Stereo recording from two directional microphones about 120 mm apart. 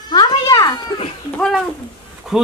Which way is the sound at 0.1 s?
35° left (ahead or behind).